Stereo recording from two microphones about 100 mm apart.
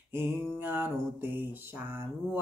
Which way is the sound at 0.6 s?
20° right (ahead or behind).